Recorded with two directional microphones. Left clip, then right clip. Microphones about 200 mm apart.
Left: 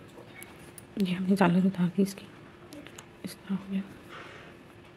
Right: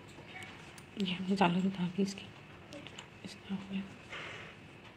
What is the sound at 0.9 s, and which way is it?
A woman's voice, 55° left (ahead or behind).